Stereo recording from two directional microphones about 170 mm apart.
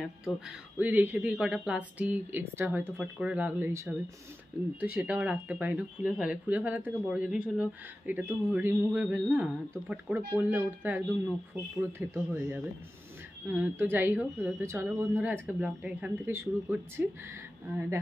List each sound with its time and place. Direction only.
0.0 s speech: 5° right (ahead or behind)
12.0 s speech: 10° right (ahead or behind)